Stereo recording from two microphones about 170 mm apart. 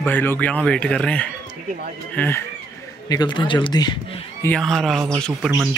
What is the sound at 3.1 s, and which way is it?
Speech, 25° left (ahead or behind).